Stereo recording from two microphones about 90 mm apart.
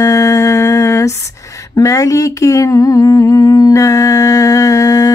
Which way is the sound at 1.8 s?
40° left (ahead or behind).